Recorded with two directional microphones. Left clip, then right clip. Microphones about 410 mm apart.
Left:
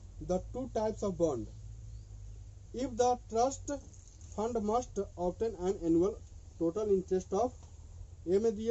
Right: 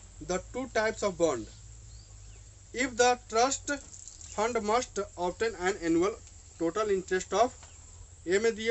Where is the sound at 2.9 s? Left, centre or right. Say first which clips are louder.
Right 4 dB; right.